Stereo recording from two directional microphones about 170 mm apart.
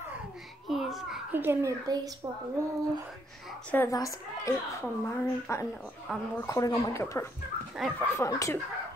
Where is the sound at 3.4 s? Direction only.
5° left (ahead or behind).